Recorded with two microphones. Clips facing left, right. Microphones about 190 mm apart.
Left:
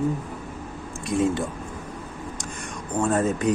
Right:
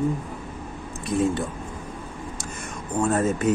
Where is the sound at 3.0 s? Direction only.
5° right (ahead or behind).